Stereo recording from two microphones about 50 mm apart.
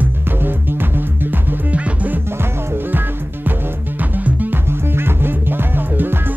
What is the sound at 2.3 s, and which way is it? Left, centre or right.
Music, right.